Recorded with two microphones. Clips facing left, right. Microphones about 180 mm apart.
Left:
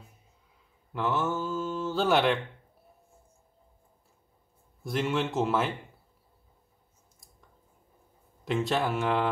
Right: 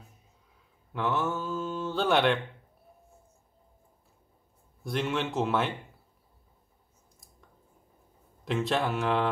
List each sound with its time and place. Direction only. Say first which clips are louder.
0.9 s speech: left 1 dB; centre (ahead or behind)
4.8 s speech: left 1 dB; centre (ahead or behind)
8.5 s speech: left 1 dB; centre (ahead or behind)